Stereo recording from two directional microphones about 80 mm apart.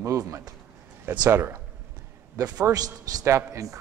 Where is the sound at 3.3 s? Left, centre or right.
Right.